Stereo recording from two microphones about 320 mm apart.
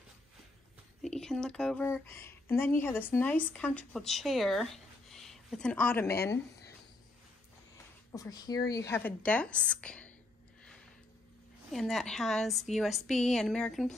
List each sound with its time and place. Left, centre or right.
1.0 s speech: centre
8.1 s speech: centre
11.7 s speech: centre